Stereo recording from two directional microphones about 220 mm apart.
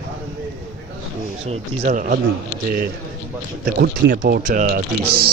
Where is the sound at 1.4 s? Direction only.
30° right (ahead or behind).